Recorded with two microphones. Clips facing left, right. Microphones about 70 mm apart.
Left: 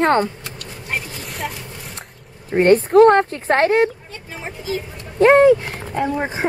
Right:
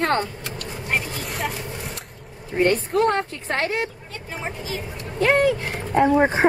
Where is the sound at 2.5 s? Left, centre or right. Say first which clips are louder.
Left 8 dB; left.